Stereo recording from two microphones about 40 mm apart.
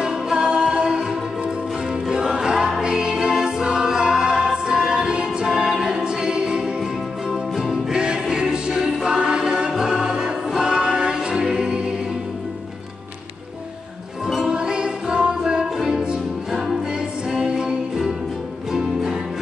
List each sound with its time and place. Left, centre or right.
0.0 s music: centre
14.2 s music: centre